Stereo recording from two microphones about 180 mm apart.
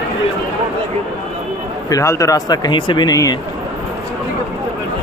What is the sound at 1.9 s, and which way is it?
Speech, 15° left (ahead or behind).